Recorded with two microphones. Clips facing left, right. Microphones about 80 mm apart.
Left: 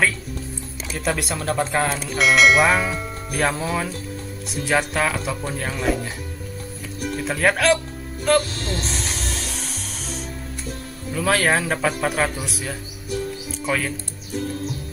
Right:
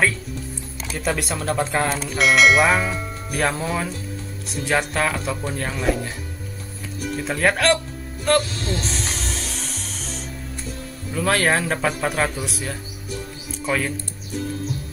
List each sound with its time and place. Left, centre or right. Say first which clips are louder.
0.9 s speech: even; centre
7.2 s speech: even; centre
8.5 s music: right 1 dB; left
8.8 s music: even; centre
11.1 s speech: even; centre